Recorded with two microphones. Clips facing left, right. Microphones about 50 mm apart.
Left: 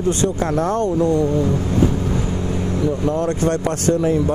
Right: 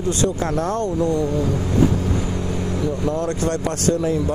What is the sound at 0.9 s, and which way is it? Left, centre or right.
Speech, centre.